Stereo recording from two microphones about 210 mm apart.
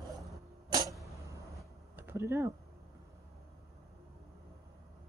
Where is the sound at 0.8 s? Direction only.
15° right (ahead or behind).